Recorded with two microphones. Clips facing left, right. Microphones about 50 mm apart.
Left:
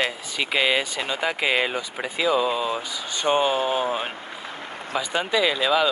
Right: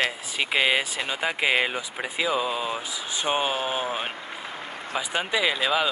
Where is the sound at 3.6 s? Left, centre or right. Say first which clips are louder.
Left 4 dB; right.